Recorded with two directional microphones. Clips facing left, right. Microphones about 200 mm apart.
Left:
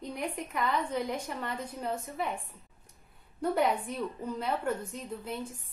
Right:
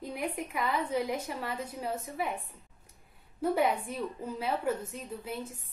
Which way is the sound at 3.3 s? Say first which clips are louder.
Even; 5° right (ahead or behind).